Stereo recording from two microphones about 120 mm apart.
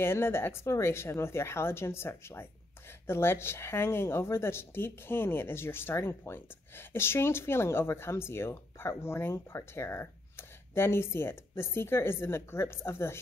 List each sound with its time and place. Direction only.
0.0 s speech: 20° left (ahead or behind)